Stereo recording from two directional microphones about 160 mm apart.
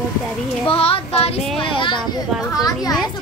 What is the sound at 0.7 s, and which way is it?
Child singing, 35° left (ahead or behind).